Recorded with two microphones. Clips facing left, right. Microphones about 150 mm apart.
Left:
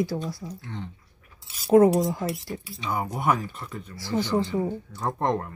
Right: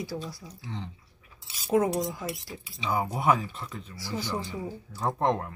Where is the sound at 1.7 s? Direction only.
60° left (ahead or behind).